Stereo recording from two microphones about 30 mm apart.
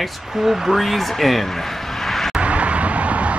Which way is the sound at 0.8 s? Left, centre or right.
Centre.